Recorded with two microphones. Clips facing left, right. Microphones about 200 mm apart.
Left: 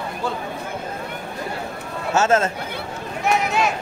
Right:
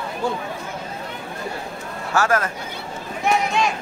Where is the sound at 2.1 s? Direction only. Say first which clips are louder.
Left 3 dB; 25° left (ahead or behind).